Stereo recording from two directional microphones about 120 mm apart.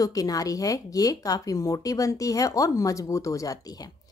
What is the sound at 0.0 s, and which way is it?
Speech, 30° left (ahead or behind).